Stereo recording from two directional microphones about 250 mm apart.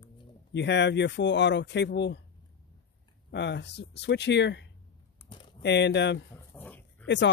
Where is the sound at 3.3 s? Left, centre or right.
Left.